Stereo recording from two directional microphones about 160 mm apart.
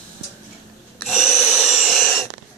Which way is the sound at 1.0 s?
5° right (ahead or behind).